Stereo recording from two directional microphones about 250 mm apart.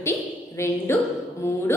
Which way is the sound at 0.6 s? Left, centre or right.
Centre.